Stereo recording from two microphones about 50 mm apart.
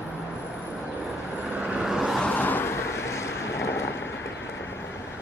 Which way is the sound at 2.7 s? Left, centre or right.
Left.